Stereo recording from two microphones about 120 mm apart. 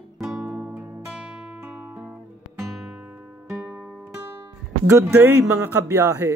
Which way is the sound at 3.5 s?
20° right (ahead or behind).